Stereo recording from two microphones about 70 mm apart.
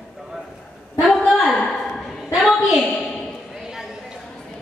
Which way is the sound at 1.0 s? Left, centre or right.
Centre.